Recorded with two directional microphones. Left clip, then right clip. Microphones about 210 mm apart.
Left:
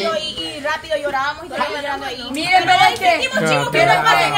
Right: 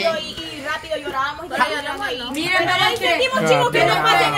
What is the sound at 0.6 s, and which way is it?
Speech, 25° left (ahead or behind).